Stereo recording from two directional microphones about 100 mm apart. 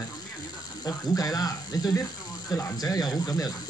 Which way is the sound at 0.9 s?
40° left (ahead or behind).